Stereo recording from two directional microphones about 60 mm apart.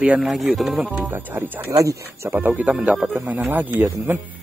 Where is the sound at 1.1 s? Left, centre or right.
Right.